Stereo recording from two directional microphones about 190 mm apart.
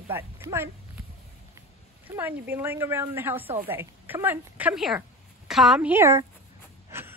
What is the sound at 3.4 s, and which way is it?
Speech, 30° right (ahead or behind).